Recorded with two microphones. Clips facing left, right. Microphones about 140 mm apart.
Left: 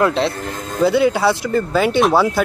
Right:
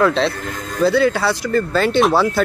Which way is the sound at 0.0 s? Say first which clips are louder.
Right 1 dB; 15° left (ahead or behind).